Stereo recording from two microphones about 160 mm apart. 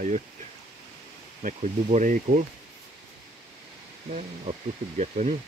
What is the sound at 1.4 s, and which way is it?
Speech, 55° right (ahead or behind).